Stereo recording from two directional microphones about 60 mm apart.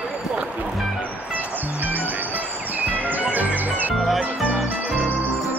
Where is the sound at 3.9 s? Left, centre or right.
Centre.